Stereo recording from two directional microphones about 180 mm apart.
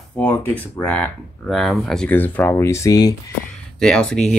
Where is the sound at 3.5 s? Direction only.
5° left (ahead or behind).